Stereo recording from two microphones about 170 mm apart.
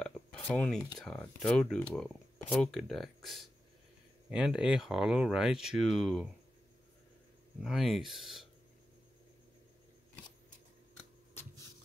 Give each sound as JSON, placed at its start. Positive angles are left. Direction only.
{"t": 0.0, "sound": "speech", "side_deg": 5}
{"t": 7.6, "sound": "speech", "side_deg": 0}